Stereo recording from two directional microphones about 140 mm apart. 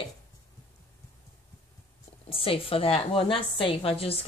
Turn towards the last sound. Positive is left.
turn(degrees=45)  # may be behind; listen again after turning